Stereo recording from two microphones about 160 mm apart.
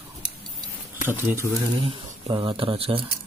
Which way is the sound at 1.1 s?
15° right (ahead or behind).